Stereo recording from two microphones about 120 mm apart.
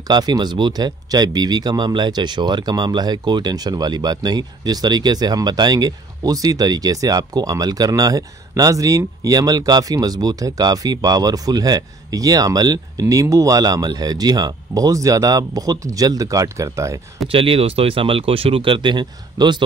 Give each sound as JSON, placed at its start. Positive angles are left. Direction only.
{"t": 0.1, "sound": "speech", "side_deg": -35}
{"t": 17.3, "sound": "speech", "side_deg": -50}